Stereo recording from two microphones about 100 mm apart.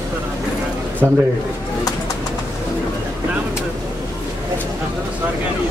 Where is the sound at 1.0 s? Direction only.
25° right (ahead or behind).